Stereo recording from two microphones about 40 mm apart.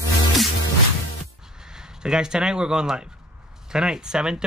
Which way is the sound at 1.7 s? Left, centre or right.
Centre.